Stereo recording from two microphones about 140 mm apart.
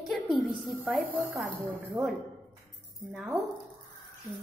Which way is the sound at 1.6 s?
20° right (ahead or behind).